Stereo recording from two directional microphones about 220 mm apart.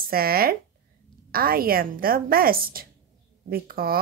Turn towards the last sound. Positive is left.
turn(degrees=-45)  # may be behind; listen again after turning